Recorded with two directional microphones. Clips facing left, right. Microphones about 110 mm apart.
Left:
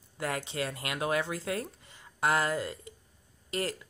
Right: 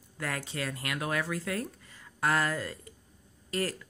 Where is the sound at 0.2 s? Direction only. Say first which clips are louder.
Left 2 dB; 20° left (ahead or behind).